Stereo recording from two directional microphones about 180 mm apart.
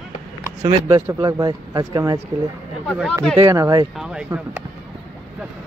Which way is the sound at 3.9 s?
5° right (ahead or behind).